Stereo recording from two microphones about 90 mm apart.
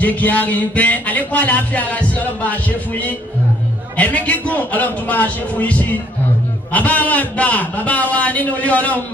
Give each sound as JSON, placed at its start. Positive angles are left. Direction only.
{"t": 0.0, "sound": "speech", "side_deg": 20}